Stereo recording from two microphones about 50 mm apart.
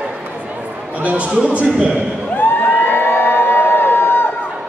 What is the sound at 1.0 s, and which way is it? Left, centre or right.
Speech, right.